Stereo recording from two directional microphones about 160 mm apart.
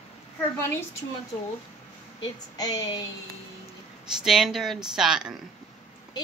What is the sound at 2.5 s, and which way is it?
Speech, 20° left (ahead or behind).